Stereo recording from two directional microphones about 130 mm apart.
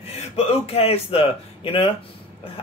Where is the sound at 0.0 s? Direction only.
55° left (ahead or behind).